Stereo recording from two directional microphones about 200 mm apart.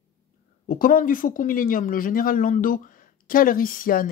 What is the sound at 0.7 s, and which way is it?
Speech, 45° left (ahead or behind).